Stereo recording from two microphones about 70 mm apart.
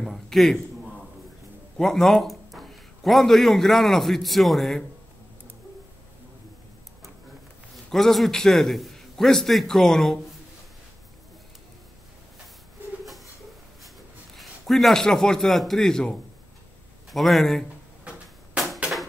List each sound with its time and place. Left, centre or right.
0.0 s a sound: centre
1.8 s speech: centre
7.7 s a man's voice: centre
14.3 s a man's voice: centre